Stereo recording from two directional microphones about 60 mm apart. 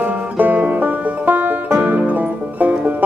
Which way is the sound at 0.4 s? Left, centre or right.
Right.